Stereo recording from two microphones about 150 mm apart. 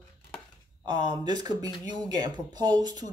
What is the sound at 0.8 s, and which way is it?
Speech, 30° right (ahead or behind).